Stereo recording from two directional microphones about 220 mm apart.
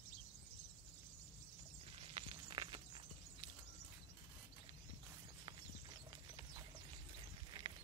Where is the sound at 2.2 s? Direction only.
25° right (ahead or behind).